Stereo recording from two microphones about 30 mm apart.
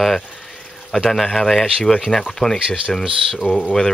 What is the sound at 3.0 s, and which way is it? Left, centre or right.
Speech, centre.